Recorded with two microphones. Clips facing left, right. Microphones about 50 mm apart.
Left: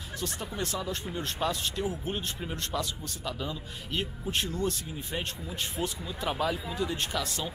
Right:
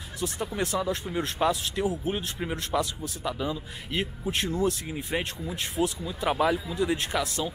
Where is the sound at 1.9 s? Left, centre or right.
Centre.